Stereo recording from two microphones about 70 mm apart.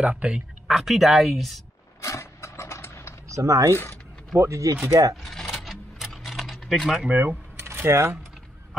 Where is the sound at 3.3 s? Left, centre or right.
Right.